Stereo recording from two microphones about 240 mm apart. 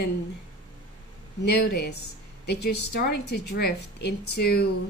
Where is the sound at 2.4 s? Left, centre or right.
Left.